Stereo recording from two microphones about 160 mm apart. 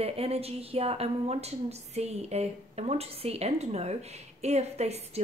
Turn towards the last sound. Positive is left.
turn(degrees=-40)  # may be behind; listen again after turning